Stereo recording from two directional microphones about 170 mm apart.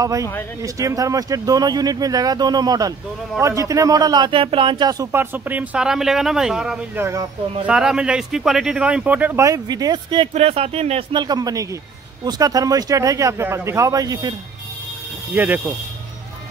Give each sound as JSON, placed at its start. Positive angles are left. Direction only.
{"t": 0.0, "sound": "speech", "side_deg": -20}
{"t": 5.1, "sound": "speech", "side_deg": -10}
{"t": 10.3, "sound": "speech", "side_deg": -35}
{"t": 15.3, "sound": "speech", "side_deg": -10}